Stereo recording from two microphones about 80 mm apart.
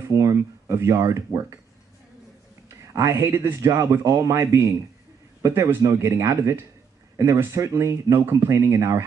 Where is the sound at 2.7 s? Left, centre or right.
Right.